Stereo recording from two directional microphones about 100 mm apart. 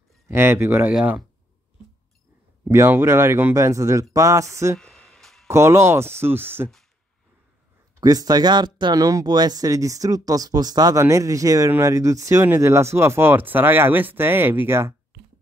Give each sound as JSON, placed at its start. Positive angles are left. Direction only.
{"t": 0.3, "sound": "speech", "side_deg": -25}
{"t": 2.7, "sound": "speech", "side_deg": -30}
{"t": 4.7, "sound": "a sound", "side_deg": 5}
{"t": 5.5, "sound": "speech", "side_deg": -25}
{"t": 7.9, "sound": "speech", "side_deg": -40}